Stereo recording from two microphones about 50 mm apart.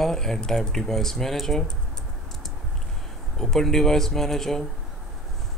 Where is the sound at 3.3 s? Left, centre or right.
Centre.